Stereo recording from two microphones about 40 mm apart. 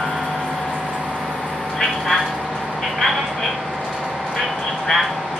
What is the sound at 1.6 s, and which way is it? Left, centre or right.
Vehicle, centre.